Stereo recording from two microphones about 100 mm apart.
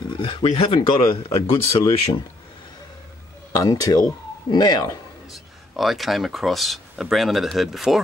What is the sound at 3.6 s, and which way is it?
Speech, 35° left (ahead or behind).